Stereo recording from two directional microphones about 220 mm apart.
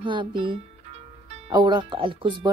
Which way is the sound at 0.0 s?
20° right (ahead or behind).